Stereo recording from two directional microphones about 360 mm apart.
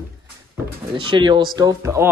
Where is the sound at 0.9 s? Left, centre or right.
Centre.